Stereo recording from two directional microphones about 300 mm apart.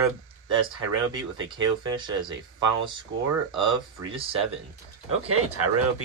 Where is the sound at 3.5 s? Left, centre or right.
Centre.